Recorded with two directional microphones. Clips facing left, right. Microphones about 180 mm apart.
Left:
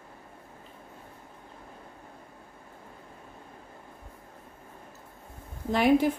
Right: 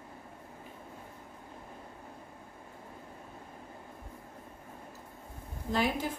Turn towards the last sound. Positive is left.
turn(degrees=65)  # may be behind; listen again after turning